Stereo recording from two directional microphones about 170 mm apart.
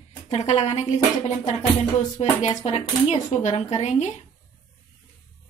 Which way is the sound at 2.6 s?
35° left (ahead or behind).